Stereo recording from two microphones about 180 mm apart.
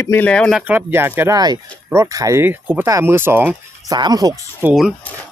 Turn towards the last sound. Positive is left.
turn(degrees=-5)  # may be behind; listen again after turning